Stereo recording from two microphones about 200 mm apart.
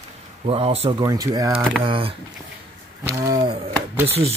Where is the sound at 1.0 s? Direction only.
15° right (ahead or behind).